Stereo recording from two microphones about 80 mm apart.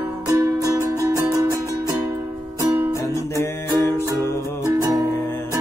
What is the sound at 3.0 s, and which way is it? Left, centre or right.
Music, left.